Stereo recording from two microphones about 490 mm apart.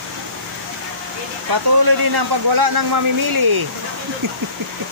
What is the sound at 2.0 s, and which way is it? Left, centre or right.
A man's voice, right.